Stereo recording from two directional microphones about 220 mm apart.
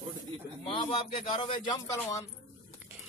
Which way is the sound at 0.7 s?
25° left (ahead or behind).